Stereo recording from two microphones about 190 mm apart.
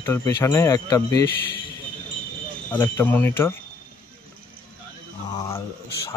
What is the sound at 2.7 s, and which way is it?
Speech, 10° left (ahead or behind).